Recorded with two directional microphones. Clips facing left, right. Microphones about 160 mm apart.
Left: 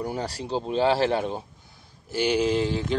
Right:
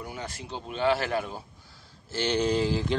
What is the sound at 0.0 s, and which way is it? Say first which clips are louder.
Speech: left 8 dB; 35° left (ahead or behind).